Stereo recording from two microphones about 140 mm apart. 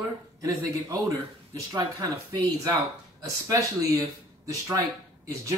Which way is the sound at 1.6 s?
25° right (ahead or behind).